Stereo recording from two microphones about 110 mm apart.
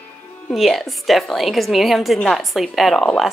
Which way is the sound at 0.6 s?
Centre (ahead or behind).